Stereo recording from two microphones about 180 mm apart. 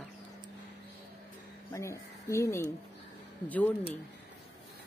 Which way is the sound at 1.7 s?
15° left (ahead or behind).